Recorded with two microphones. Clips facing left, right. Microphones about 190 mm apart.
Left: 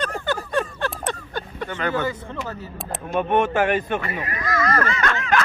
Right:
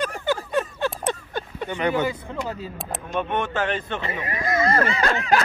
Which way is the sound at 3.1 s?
50° left (ahead or behind).